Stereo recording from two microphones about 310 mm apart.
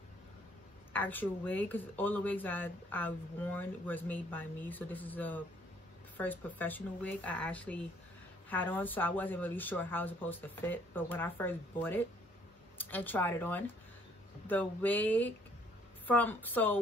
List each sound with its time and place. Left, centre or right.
0.9 s speech: centre